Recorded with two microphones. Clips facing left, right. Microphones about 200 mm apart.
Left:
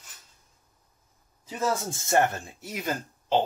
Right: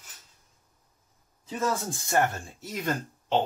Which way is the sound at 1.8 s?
25° left (ahead or behind).